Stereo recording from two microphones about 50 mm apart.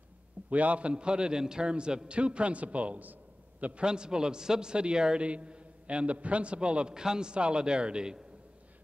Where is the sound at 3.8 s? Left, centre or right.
Centre.